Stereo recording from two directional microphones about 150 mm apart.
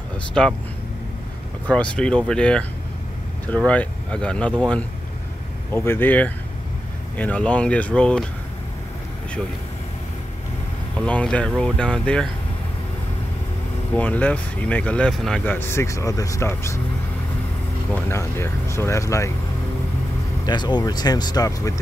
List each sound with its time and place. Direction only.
0.3 s speech: 5° left (ahead or behind)
1.7 s speech: 5° left (ahead or behind)
11.0 s speech: 5° left (ahead or behind)
13.9 s speech: 10° left (ahead or behind)
17.9 s speech: 15° left (ahead or behind)
20.4 s speech: 30° left (ahead or behind)